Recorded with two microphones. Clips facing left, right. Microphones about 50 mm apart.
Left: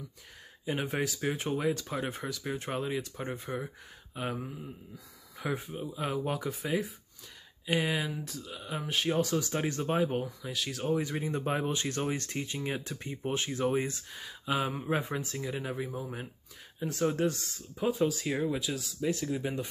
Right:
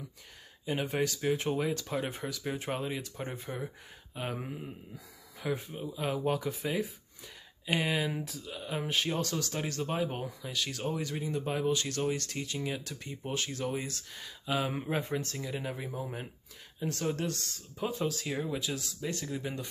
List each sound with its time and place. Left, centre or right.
0.7 s speech: centre
4.4 s a man's voice: right
4.9 s speech: centre; by 10.0 s left
10.0 s speech: centre
11.0 s speech: left
14.1 s speech: centre